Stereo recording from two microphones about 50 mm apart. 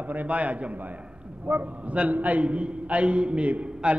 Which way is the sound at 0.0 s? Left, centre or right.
Right.